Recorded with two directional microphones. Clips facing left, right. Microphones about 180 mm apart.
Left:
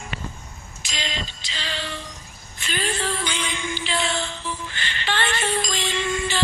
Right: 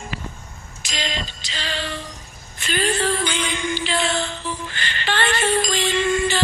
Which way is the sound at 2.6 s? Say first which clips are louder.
Right 5 dB; 60° right (ahead or behind).